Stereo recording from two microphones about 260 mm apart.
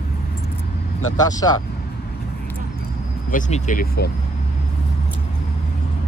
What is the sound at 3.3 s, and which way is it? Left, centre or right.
Speech, left.